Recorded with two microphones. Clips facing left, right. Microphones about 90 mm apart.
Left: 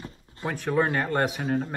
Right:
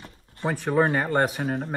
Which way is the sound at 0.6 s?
5° right (ahead or behind).